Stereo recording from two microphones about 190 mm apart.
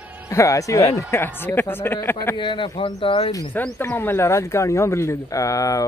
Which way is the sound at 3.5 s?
10° left (ahead or behind).